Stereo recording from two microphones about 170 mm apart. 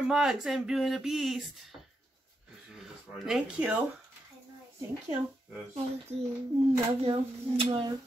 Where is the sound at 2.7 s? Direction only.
5° right (ahead or behind).